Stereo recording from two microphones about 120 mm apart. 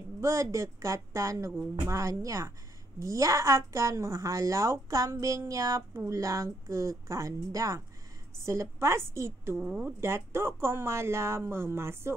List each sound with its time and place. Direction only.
0.2 s speech: 25° right (ahead or behind)
9.6 s speech: 10° right (ahead or behind)